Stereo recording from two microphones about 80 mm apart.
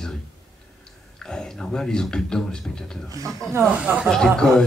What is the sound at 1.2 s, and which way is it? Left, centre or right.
Speech, centre.